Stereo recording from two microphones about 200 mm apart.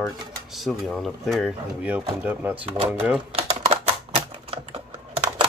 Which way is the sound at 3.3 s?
30° right (ahead or behind).